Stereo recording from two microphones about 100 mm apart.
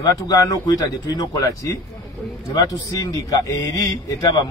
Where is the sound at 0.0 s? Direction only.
35° left (ahead or behind).